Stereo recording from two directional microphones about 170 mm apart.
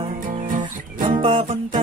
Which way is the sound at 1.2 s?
40° right (ahead or behind).